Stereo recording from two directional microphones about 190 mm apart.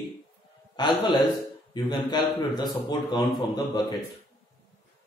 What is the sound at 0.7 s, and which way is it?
A man's voice, 25° left (ahead or behind).